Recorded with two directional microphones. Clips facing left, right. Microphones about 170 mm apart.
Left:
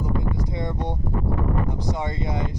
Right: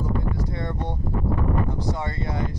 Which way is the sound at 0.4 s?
15° left (ahead or behind).